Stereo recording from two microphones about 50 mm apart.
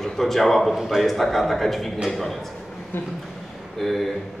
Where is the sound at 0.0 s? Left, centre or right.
Centre.